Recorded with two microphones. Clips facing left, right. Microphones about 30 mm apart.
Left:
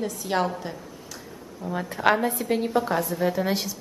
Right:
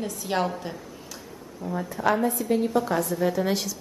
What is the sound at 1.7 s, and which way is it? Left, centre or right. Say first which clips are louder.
Speech: left 3 dB; left.